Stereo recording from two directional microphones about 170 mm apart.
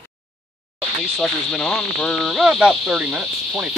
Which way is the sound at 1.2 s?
5° left (ahead or behind).